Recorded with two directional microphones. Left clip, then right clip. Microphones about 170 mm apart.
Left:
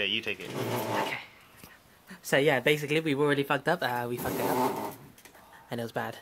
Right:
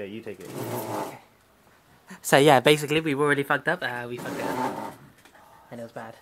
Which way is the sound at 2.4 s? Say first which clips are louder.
Right 8 dB; 40° right (ahead or behind).